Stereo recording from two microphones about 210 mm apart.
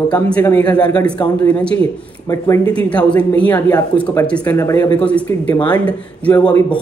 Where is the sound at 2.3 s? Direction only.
15° left (ahead or behind).